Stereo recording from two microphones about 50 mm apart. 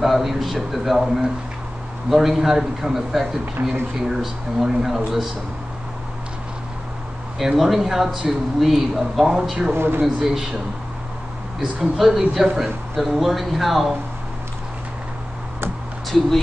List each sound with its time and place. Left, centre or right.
0.0 s speech: centre
3.6 s speech: right
4.2 s speech: centre
7.5 s speech: centre
9.8 s speech: right
10.0 s speech: centre
11.8 s speech: centre